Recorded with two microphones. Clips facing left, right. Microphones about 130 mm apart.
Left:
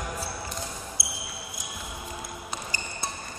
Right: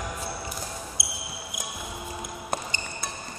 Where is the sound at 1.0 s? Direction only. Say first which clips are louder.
Even; 20° right (ahead or behind).